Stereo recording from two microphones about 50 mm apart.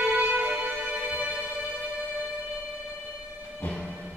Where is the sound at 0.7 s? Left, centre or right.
Centre.